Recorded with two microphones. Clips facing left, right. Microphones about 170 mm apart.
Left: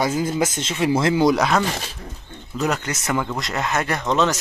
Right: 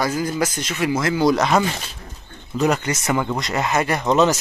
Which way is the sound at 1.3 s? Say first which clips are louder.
Right 1 dB; centre (ahead or behind).